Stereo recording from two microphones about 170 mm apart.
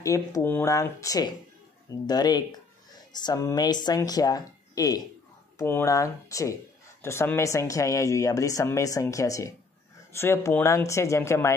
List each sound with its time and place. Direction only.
0.0 s speech: 20° left (ahead or behind)